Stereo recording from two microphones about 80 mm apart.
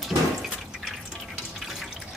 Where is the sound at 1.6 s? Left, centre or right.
Centre.